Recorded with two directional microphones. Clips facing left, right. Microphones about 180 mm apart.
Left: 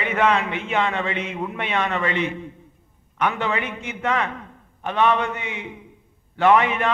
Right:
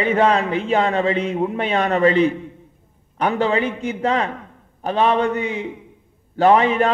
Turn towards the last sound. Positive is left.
turn(degrees=-35)  # may be behind; listen again after turning